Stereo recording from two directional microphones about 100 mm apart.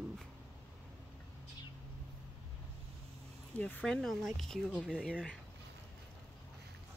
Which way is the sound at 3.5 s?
15° left (ahead or behind).